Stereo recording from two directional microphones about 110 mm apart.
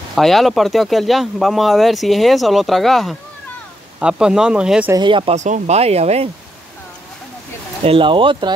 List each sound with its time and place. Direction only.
0.1 s speech: centre (ahead or behind)
4.9 s speech: 45° right (ahead or behind)
5.3 s speech: 90° right; by 6.3 s 70° right (ahead or behind)
7.8 s speech: 55° right (ahead or behind)